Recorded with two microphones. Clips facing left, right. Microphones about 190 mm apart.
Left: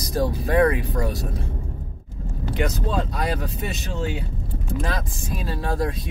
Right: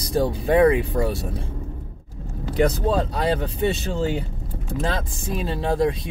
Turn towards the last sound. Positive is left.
turn(degrees=-25)  # may be behind; listen again after turning